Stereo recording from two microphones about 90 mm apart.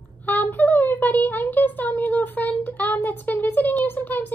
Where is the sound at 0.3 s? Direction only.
20° left (ahead or behind).